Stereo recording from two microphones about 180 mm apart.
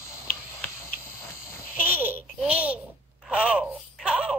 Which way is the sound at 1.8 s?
10° right (ahead or behind).